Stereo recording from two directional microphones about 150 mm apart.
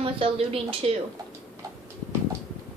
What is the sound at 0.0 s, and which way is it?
Speech, 40° right (ahead or behind).